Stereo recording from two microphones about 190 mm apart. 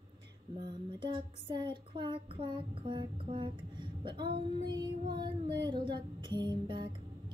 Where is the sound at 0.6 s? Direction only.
25° right (ahead or behind).